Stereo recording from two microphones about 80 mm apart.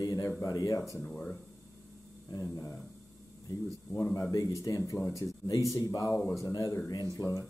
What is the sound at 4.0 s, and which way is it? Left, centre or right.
Speech, left.